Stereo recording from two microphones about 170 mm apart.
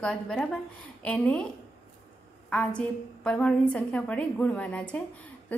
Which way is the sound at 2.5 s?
5° left (ahead or behind).